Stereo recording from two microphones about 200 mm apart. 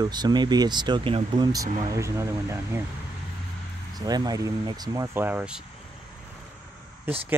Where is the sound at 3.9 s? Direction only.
20° right (ahead or behind).